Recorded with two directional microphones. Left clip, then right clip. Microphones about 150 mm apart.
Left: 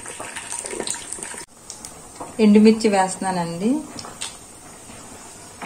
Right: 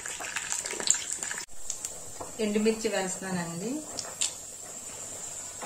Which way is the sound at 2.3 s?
50° left (ahead or behind).